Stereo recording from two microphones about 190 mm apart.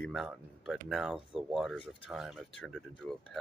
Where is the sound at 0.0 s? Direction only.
Centre (ahead or behind).